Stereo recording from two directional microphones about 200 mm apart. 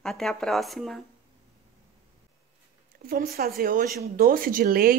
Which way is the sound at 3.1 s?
50° right (ahead or behind).